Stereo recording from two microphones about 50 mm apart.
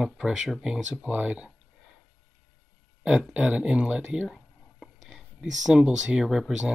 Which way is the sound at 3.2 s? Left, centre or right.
Right.